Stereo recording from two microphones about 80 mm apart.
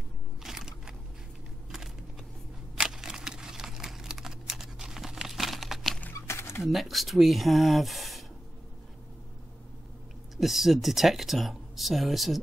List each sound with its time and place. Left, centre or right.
0.4 s crushing: centre
2.8 s computer keyboard: centre
6.2 s a sound: left
6.6 s speech: centre
10.3 s speech: centre